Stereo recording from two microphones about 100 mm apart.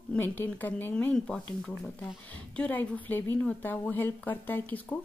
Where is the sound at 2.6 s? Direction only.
15° left (ahead or behind).